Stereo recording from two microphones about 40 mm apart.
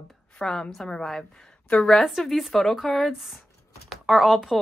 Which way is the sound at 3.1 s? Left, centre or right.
Centre.